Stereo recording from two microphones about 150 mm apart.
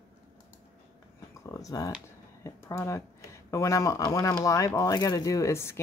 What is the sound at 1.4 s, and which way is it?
Speech, 20° left (ahead or behind).